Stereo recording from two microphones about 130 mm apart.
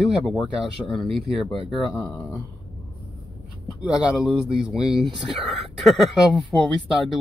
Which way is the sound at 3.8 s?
10° right (ahead or behind).